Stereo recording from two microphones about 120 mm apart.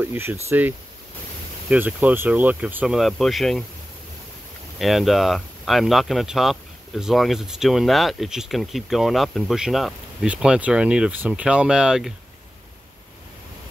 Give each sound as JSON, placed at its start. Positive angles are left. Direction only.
{"t": 0.0, "sound": "speech", "side_deg": -20}
{"t": 4.7, "sound": "speech", "side_deg": 0}